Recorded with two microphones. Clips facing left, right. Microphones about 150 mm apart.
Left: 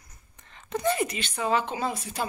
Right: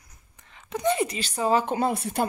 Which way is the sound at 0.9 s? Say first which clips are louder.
Right 2 dB; 30° right (ahead or behind).